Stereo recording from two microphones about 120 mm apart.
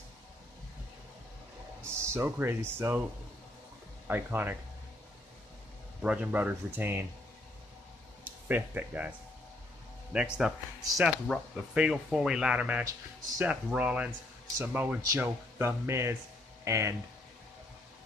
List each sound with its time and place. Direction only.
2.0 s speech: 20° right (ahead or behind)
4.1 s speech: 15° right (ahead or behind)
6.0 s speech: 10° right (ahead or behind)
8.5 s speech: 15° right (ahead or behind)
10.3 s speech: 5° right (ahead or behind); by 16.9 s 25° right (ahead or behind)